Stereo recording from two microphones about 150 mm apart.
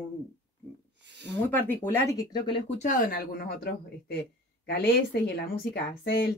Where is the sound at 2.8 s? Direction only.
65° left (ahead or behind).